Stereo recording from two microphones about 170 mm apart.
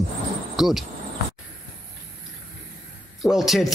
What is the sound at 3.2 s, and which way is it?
Speech, centre (ahead or behind).